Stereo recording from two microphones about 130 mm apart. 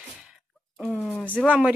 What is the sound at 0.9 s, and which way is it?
Speech, 10° left (ahead or behind).